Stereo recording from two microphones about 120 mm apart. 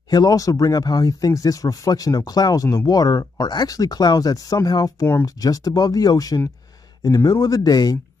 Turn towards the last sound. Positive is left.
turn(degrees=30)  # may be behind; listen again after turning